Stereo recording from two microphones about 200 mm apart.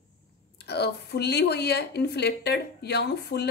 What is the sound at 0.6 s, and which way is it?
A woman's voice, 55° left (ahead or behind).